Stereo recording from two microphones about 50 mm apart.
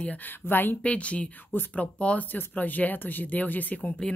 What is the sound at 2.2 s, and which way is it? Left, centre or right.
Speech, left.